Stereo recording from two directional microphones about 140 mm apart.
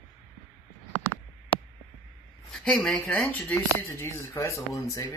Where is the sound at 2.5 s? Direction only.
5° left (ahead or behind); by 5.1 s 20° left (ahead or behind).